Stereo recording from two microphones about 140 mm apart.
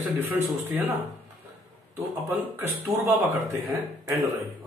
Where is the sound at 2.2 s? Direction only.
15° right (ahead or behind).